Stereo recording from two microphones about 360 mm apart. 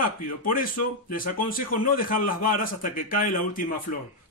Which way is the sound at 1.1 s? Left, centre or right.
Left.